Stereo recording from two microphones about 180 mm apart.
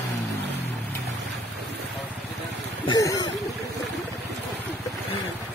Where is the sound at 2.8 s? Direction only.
20° left (ahead or behind).